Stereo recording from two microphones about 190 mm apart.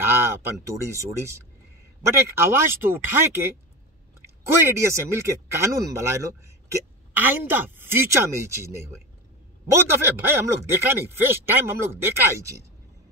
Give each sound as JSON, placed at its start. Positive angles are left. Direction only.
{"t": 0.0, "sound": "speech", "side_deg": -10}
{"t": 4.6, "sound": "speech", "side_deg": -15}
{"t": 10.2, "sound": "speech", "side_deg": -15}